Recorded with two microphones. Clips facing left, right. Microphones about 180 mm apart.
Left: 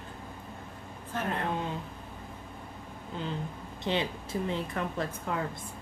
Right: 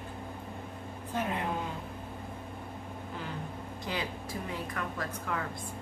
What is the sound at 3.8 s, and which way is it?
Speech, 25° left (ahead or behind).